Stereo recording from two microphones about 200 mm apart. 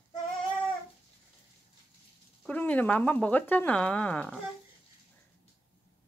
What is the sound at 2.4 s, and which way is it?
Speech, 5° left (ahead or behind).